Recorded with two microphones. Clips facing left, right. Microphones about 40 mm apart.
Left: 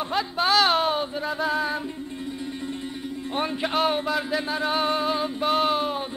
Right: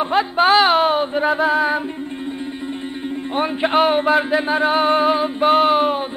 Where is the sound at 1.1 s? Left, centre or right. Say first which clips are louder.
Right 11 dB; right.